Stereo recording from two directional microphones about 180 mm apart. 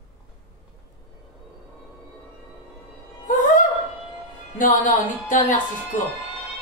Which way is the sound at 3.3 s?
45° left (ahead or behind).